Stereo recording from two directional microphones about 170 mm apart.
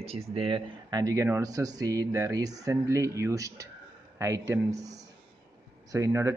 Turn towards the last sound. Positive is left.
turn(degrees=-20)  # may be behind; listen again after turning